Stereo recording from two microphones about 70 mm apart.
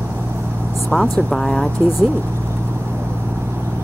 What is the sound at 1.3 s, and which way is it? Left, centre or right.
Speech, centre.